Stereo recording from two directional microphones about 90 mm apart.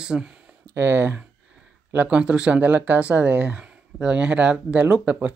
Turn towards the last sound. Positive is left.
turn(degrees=-15)  # may be behind; listen again after turning